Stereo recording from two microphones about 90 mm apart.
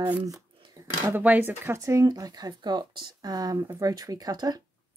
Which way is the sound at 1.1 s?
20° right (ahead or behind).